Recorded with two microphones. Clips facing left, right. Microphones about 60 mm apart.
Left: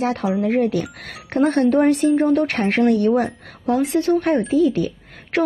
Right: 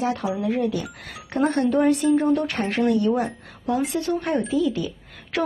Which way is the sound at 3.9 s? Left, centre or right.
Left.